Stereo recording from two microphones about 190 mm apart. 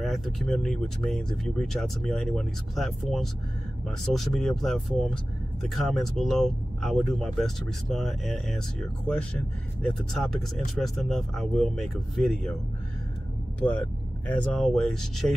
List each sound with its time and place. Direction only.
0.0 s speech: centre (ahead or behind)
14.2 s speech: 5° left (ahead or behind)